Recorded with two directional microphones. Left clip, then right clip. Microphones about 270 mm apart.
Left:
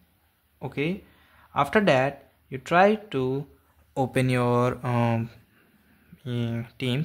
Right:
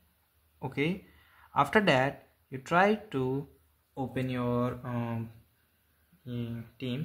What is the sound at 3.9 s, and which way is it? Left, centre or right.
Speech, left.